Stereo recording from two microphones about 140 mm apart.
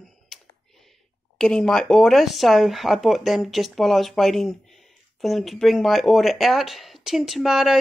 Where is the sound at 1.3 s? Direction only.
5° left (ahead or behind).